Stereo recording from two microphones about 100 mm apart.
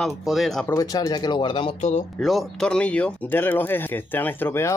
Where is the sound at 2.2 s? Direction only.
Centre (ahead or behind).